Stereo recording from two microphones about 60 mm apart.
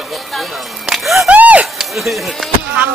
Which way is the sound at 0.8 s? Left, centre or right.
Centre.